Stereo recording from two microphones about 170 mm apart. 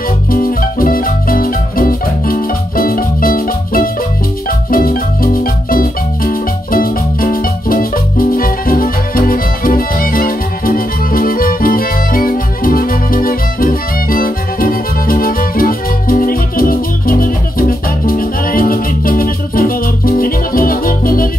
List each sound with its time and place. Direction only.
0.3 s music: 60° left (ahead or behind)
4.5 s marimba: 60° left (ahead or behind)